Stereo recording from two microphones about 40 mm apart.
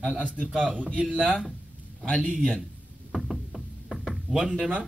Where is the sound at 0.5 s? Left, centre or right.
Centre.